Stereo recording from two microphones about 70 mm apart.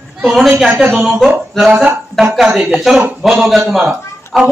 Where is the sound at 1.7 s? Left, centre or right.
Centre.